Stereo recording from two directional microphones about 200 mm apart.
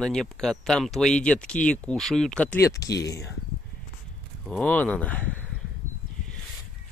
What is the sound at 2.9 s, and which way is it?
Speech, 55° left (ahead or behind).